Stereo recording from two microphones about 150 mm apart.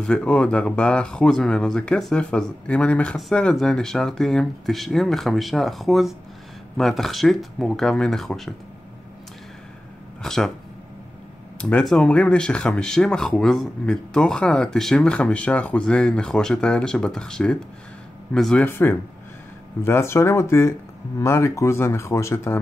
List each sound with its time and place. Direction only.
0.0 s speech: 5° left (ahead or behind)
10.2 s speech: 5° left (ahead or behind)
11.7 s speech: 5° left (ahead or behind)